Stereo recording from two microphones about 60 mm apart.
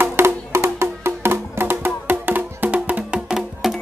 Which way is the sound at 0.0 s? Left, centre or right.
Right.